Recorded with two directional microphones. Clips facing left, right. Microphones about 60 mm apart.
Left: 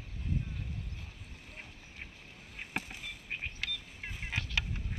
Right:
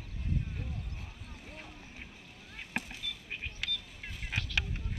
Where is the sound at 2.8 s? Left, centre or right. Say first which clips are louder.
Right 1 dB; left.